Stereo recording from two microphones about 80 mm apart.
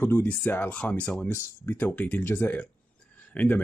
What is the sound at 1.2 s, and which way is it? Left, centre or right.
Speech, left.